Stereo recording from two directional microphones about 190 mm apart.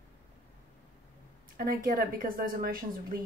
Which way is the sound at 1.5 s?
50° right (ahead or behind).